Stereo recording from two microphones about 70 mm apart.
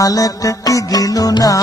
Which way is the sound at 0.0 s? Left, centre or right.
Left.